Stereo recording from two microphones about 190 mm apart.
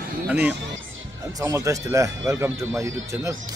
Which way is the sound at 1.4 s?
15° right (ahead or behind).